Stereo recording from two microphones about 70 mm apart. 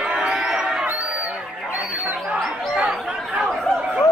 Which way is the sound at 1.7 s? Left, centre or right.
Right.